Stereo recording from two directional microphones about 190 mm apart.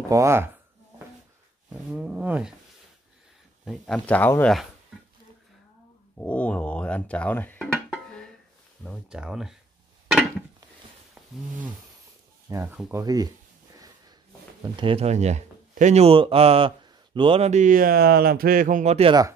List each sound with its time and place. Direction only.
0.1 s speech: 15° right (ahead or behind)
1.7 s speech: 5° right (ahead or behind)
3.6 s speech: 5° left (ahead or behind)
6.1 s speech: 5° left (ahead or behind)
12.4 s speech: 15° right (ahead or behind)
14.6 s speech: 25° right (ahead or behind)